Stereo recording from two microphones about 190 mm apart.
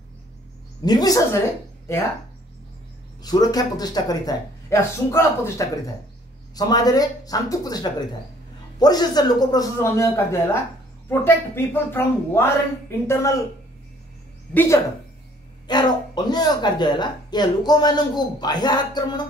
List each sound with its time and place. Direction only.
0.8 s speech: 20° left (ahead or behind)
3.2 s speech: 20° left (ahead or behind)
14.5 s speech: 10° left (ahead or behind)
15.6 s speech: 20° left (ahead or behind)